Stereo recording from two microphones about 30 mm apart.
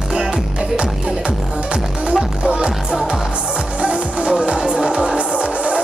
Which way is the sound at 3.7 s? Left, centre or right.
Right.